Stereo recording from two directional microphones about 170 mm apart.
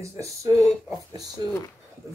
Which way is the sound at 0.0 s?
20° right (ahead or behind).